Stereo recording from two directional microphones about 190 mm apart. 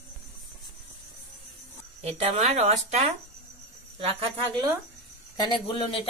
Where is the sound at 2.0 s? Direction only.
35° right (ahead or behind).